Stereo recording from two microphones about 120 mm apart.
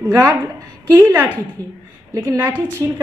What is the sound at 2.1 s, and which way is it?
Speech, 25° right (ahead or behind).